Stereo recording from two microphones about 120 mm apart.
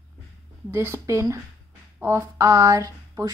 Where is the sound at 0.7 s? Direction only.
20° right (ahead or behind).